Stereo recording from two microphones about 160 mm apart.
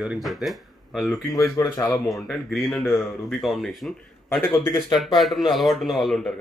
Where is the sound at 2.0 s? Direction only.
Centre (ahead or behind).